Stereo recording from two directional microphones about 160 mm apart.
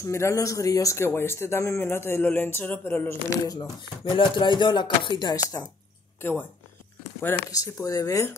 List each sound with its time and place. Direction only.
0.0 s speech: 20° left (ahead or behind)
7.2 s speech: 10° left (ahead or behind)
7.5 s speech: 20° left (ahead or behind)